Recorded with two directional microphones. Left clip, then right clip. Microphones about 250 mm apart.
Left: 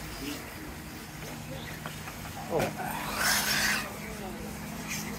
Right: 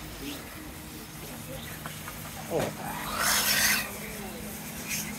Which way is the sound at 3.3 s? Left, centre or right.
Right.